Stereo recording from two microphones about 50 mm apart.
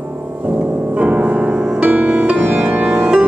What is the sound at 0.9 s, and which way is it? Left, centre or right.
Music, right.